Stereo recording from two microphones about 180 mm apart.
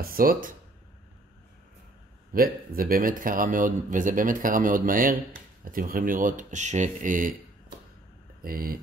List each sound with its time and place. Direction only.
0.0 s speech: 55° right (ahead or behind)
2.3 s speech: 55° right (ahead or behind)
8.4 s speech: 55° right (ahead or behind)